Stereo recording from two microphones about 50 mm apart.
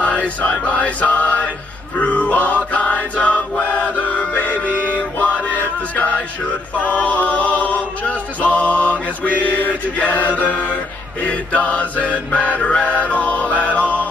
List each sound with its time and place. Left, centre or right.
0.0 s chant: left
6.8 s a capella: left
11.2 s chant: left